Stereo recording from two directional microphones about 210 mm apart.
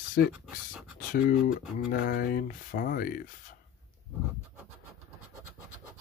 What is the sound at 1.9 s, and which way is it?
Speech, 45° left (ahead or behind).